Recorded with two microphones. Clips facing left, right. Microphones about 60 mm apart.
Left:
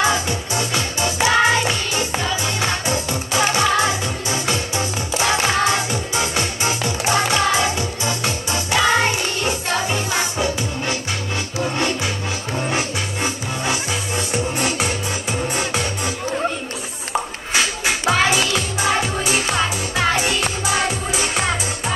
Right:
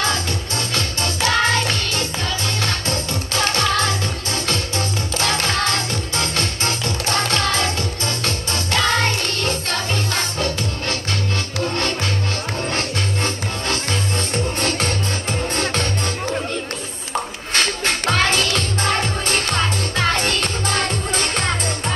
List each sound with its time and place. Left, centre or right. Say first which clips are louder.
0.0 s music: left 3 dB; centre
12.6 s music: left 1 dB; centre
17.6 s music: even; centre